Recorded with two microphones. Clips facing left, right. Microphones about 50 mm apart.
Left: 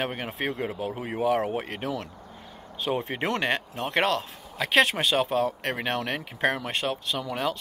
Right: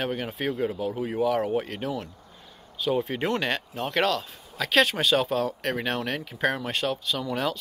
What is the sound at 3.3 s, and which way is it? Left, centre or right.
Speech, left.